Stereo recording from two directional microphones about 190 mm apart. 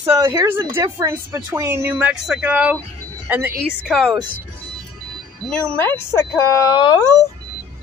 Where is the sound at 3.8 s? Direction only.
Centre (ahead or behind).